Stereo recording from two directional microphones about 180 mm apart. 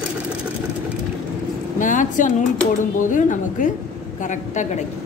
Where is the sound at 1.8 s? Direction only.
45° left (ahead or behind).